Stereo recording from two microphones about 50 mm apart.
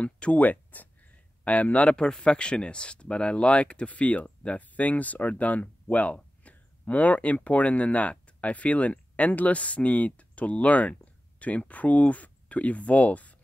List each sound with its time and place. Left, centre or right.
0.0 s speech: left
2.0 s speech: centre